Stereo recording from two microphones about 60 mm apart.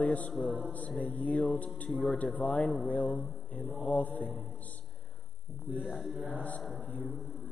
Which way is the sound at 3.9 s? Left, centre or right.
Left.